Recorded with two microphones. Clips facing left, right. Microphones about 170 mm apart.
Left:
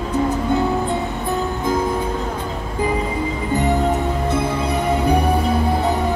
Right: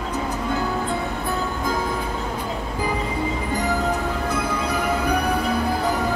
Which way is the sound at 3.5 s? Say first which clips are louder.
Left 6 dB; 25° left (ahead or behind).